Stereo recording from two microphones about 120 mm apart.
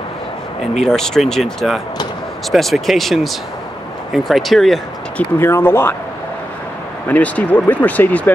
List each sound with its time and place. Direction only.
0.8 s speech: 5° left (ahead or behind)
5.1 s speech: 20° left (ahead or behind)
7.1 s speech: 10° left (ahead or behind)